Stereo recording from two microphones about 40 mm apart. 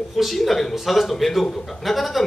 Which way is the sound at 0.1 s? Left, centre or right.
Centre.